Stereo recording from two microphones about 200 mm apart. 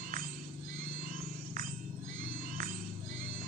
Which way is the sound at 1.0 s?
45° right (ahead or behind).